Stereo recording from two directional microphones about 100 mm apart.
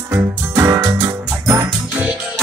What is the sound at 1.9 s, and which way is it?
Music, 10° right (ahead or behind).